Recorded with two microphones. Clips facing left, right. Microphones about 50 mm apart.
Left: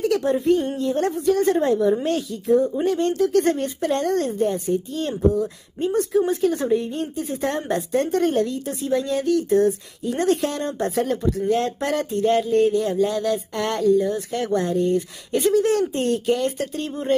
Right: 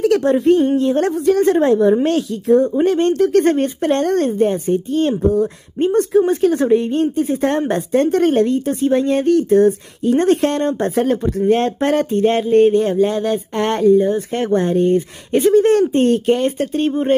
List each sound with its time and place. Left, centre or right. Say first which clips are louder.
0.0 s speech: right 6 dB; right